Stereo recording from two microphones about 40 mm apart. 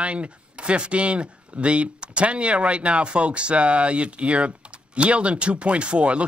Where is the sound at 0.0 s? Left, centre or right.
Right.